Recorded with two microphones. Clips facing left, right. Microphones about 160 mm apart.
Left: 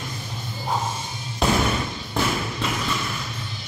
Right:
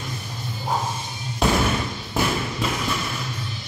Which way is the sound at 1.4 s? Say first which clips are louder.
Right 1 dB; centre (ahead or behind).